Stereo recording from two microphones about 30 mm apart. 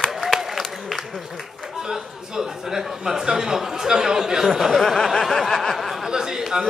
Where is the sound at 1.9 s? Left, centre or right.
Centre.